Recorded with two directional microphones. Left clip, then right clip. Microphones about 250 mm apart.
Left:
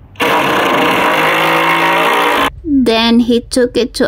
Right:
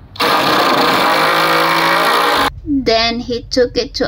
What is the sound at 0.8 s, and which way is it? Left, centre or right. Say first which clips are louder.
Vehicle: left 1 dB; centre.